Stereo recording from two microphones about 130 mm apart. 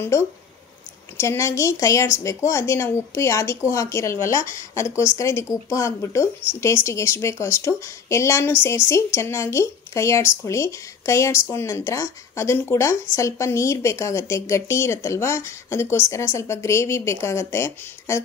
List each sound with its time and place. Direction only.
0.0 s a woman's voice: 20° left (ahead or behind)